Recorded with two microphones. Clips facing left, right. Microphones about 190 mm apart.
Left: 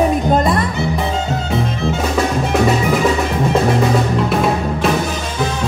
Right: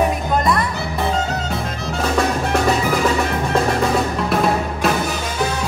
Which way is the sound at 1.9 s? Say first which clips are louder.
Even; centre (ahead or behind).